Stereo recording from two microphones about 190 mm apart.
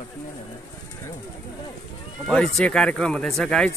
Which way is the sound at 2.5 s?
5° left (ahead or behind).